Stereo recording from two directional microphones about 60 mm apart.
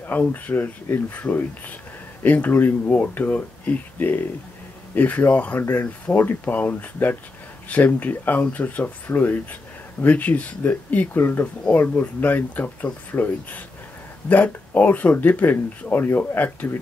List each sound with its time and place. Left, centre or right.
0.1 s speech: left